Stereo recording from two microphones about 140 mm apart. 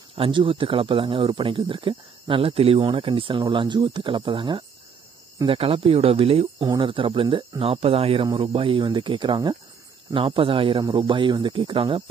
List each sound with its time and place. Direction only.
0.1 s speech: 40° right (ahead or behind)